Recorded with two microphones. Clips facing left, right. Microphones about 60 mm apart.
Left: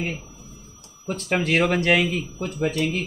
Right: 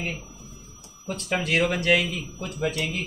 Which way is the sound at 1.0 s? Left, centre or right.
Left.